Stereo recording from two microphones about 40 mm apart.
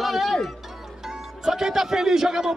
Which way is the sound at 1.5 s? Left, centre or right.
Centre.